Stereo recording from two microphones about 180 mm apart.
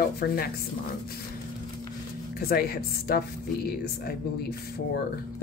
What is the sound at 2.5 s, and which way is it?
Speech, 60° left (ahead or behind).